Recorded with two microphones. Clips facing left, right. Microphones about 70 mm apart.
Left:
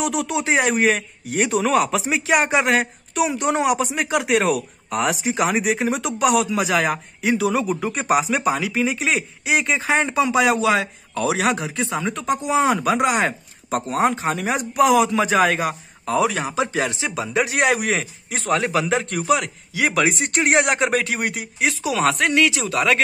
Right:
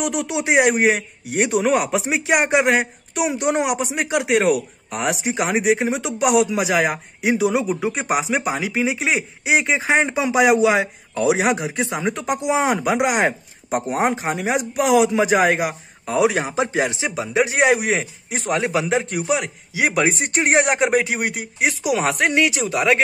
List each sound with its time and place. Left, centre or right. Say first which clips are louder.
0.0 s speech: even; centre
16.3 s speech: right 2 dB; right
17.1 s speech: right 2 dB; centre